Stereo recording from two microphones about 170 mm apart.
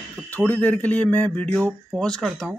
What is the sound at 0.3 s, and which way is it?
Speech, 10° left (ahead or behind).